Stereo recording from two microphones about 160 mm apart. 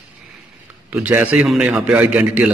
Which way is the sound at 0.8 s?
10° right (ahead or behind).